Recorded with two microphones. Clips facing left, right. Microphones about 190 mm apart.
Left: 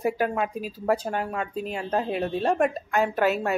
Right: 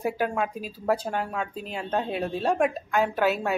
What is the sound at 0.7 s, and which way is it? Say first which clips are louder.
Speech: left 1 dB; 10° left (ahead or behind).